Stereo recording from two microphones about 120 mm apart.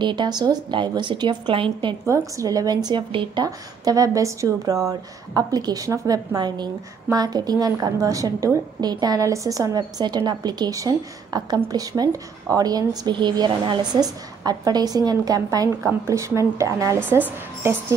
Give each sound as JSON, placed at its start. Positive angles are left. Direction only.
{"t": 0.0, "sound": "a woman's voice", "side_deg": -40}
{"t": 2.0, "sound": "a woman's voice", "side_deg": -25}
{"t": 3.4, "sound": "a woman's voice", "side_deg": -30}